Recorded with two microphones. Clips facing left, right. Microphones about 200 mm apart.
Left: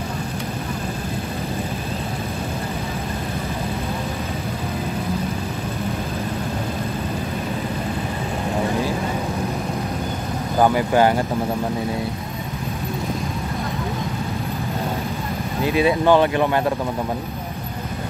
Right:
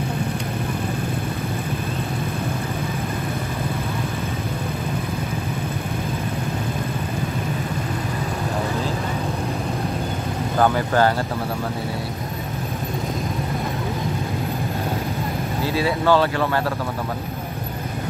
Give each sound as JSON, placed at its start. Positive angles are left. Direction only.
{"t": 10.6, "sound": "speech", "side_deg": 15}
{"t": 15.6, "sound": "speech", "side_deg": 20}